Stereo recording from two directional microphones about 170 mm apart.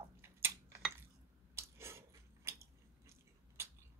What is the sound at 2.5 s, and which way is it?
Biting, 15° right (ahead or behind).